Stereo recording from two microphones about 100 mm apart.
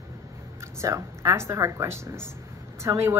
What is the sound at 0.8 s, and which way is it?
A woman's voice, 30° right (ahead or behind).